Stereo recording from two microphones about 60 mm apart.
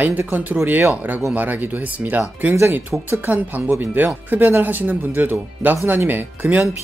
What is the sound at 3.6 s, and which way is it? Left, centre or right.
Speech, right.